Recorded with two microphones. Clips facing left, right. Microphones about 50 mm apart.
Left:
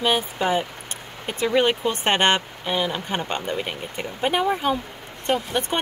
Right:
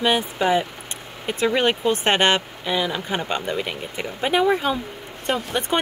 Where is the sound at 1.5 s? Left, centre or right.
Centre.